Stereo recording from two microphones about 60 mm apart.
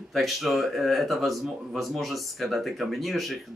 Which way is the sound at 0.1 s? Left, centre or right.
Centre.